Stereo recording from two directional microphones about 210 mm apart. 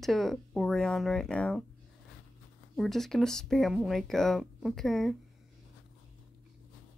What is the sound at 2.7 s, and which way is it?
A woman's voice, centre (ahead or behind).